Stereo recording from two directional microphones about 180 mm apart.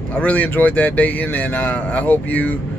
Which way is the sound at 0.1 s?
5° left (ahead or behind).